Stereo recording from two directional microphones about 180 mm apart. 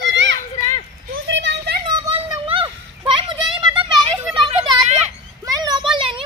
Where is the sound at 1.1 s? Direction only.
90° right.